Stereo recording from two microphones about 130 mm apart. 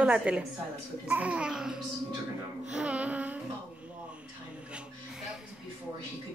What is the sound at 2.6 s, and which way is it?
Music, 10° right (ahead or behind).